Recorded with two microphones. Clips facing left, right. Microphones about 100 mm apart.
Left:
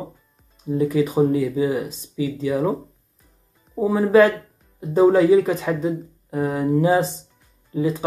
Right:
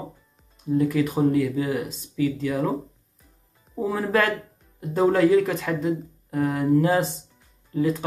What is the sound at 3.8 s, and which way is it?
Speech, 10° left (ahead or behind).